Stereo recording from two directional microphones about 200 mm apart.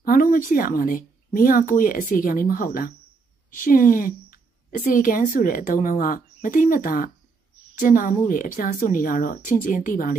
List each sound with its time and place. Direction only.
0.0 s a woman's voice: 45° left (ahead or behind)